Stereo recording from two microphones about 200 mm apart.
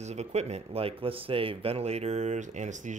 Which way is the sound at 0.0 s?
35° right (ahead or behind).